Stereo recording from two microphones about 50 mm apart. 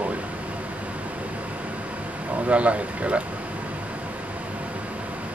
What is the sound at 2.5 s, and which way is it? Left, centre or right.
Speech, right.